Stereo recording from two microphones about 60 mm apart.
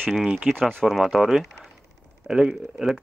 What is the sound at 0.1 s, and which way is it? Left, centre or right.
Speech, centre.